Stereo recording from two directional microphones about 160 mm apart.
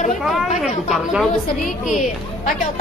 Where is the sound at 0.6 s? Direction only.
Centre (ahead or behind).